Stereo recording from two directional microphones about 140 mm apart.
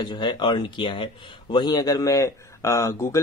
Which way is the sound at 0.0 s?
35° left (ahead or behind).